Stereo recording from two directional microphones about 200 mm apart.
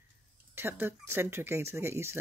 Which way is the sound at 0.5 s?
10° right (ahead or behind).